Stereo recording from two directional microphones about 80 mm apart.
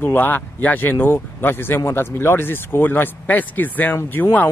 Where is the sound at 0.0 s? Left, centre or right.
Left.